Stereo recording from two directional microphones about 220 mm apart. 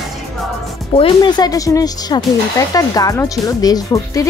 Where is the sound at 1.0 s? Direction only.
20° left (ahead or behind).